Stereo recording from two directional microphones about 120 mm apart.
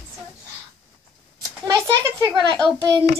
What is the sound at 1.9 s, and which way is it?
Speech, 30° right (ahead or behind).